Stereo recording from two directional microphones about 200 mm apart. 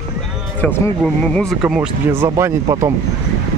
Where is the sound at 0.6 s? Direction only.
5° left (ahead or behind); by 2.9 s 15° right (ahead or behind).